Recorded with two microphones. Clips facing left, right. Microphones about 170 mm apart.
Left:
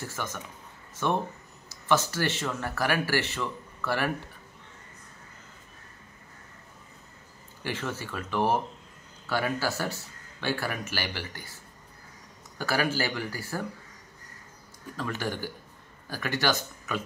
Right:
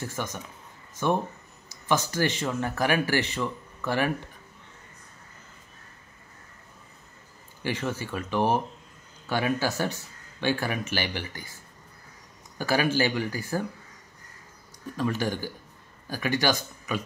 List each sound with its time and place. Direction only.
0.1 s speech: 15° right (ahead or behind)
1.7 s speech: 15° right (ahead or behind)
7.6 s speech: 15° right (ahead or behind)
12.5 s speech: 15° right (ahead or behind)
15.0 s speech: 15° right (ahead or behind)